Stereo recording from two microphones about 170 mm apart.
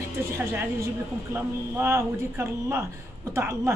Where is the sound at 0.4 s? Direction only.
15° right (ahead or behind).